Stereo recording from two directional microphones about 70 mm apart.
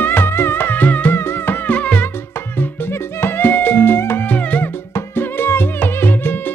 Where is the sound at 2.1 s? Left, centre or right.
Left.